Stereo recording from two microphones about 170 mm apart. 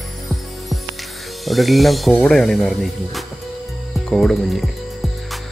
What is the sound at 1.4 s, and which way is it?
Speech, centre (ahead or behind).